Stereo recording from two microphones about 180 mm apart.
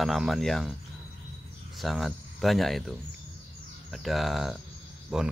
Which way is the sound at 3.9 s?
Centre (ahead or behind).